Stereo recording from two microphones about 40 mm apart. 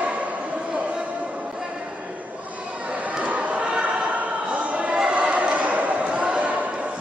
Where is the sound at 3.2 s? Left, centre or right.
Right.